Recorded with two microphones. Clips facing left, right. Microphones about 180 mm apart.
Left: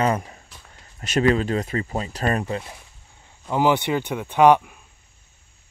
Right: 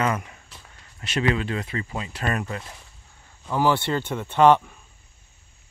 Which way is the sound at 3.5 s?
15° left (ahead or behind).